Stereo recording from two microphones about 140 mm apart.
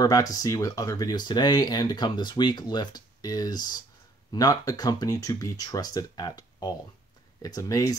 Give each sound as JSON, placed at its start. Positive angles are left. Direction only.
{"t": 0.0, "sound": "speech", "side_deg": 25}